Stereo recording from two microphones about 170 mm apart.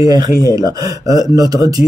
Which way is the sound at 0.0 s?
20° right (ahead or behind).